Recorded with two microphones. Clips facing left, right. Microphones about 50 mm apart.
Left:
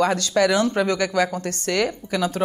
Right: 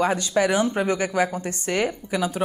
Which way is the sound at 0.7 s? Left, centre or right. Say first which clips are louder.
Left 2 dB; left.